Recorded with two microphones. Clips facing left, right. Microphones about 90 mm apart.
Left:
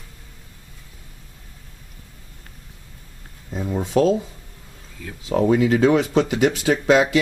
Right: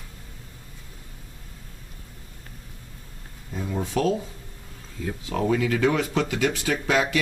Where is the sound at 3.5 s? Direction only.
30° left (ahead or behind).